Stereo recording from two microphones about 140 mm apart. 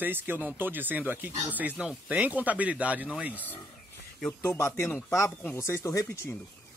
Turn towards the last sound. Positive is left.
turn(degrees=20)  # may be behind; listen again after turning